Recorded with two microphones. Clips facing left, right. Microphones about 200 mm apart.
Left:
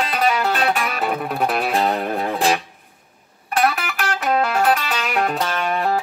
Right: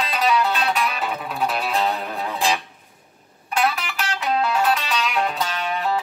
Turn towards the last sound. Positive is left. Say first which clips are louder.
# left 3 dB
turn(degrees=50)  # may be behind; listen again after turning